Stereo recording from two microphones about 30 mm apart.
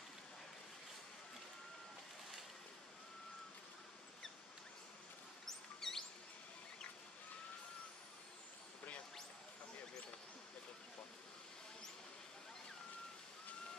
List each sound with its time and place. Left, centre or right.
5.8 s mouse: centre